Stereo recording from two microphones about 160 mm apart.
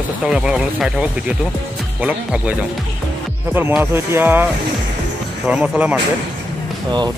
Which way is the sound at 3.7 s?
10° right (ahead or behind).